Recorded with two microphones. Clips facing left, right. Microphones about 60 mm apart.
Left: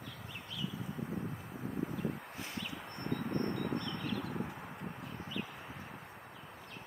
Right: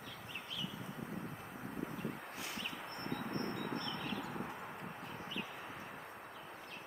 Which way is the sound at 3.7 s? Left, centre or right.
Centre.